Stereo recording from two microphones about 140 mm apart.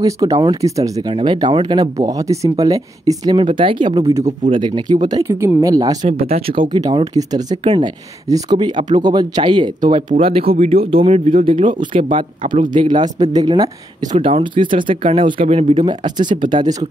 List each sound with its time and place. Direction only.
0.0 s speech: 25° right (ahead or behind)
3.3 s speech: 40° right (ahead or behind)
6.0 s speech: 45° right (ahead or behind); by 13.7 s 30° right (ahead or behind)
14.1 s speech: 40° right (ahead or behind)